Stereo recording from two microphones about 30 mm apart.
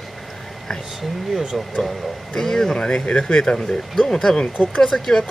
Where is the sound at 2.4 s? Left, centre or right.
Centre.